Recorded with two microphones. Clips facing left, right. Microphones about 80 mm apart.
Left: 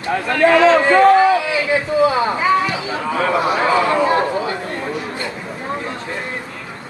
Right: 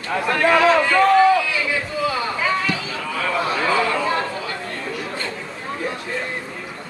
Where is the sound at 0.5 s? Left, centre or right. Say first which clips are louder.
Left 4 dB; left.